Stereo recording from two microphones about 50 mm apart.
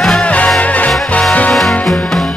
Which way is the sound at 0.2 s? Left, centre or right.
Left.